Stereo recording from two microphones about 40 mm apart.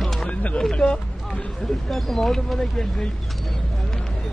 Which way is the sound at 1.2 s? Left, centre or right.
Centre.